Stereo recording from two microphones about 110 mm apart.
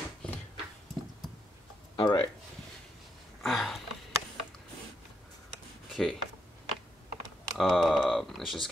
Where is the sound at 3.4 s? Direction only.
Centre (ahead or behind).